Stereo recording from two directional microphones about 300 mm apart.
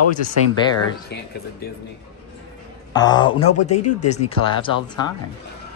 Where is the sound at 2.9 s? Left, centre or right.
Centre.